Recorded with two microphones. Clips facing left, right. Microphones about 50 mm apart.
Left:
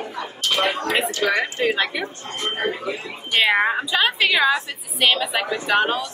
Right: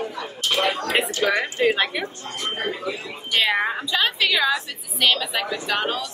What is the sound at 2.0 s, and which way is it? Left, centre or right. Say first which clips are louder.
Speech: left 2 dB; left.